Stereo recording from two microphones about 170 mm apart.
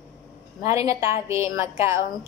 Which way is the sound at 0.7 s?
20° right (ahead or behind).